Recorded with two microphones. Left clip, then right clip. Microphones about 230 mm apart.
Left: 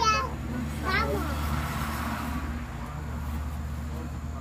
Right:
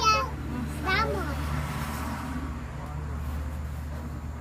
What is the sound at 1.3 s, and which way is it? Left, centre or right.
Vehicle, left.